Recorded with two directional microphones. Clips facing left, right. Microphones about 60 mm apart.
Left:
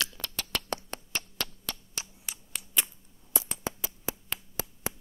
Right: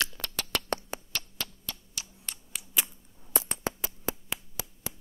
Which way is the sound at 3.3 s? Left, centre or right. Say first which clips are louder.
Right 2 dB; right.